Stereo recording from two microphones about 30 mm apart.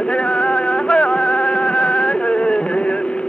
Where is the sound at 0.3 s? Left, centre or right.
Left.